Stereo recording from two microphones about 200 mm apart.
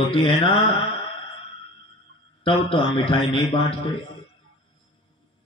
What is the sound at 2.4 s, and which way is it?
A man's voice, 25° left (ahead or behind).